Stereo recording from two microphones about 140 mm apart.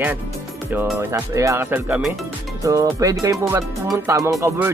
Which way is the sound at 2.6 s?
25° right (ahead or behind).